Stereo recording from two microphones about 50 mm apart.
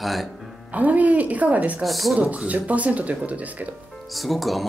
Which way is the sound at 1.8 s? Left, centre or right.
Centre.